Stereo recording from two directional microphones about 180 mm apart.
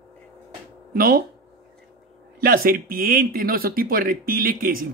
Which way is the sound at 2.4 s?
55° right (ahead or behind).